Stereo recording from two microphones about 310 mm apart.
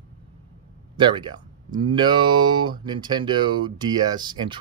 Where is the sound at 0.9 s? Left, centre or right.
Centre.